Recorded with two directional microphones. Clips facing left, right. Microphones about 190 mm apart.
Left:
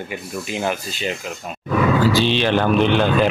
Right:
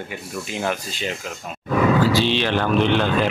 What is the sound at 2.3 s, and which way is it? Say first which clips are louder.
Speech: left 3 dB; 20° left (ahead or behind).